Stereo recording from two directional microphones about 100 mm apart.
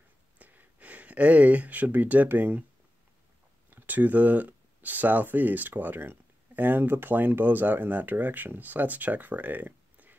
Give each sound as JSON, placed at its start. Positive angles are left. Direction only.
{"t": 0.4, "sound": "speech", "side_deg": -15}
{"t": 3.7, "sound": "speech", "side_deg": -15}